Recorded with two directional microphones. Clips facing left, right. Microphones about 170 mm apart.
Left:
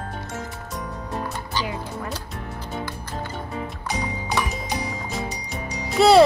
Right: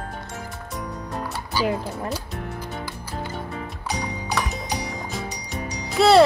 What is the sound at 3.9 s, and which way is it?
Music, centre (ahead or behind).